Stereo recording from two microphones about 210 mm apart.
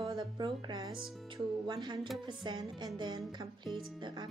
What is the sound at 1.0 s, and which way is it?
Speech, centre (ahead or behind).